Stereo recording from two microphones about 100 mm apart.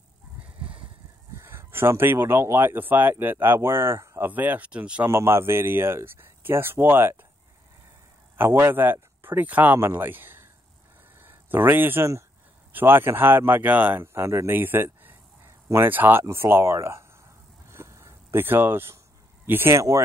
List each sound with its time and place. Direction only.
1.3 s speech: 30° right (ahead or behind)
4.3 s speech: 15° right (ahead or behind)
5.0 s speech: 25° right (ahead or behind)
8.4 s speech: 25° right (ahead or behind)
17.6 s a sound: 30° right (ahead or behind)
19.4 s speech: 20° right (ahead or behind)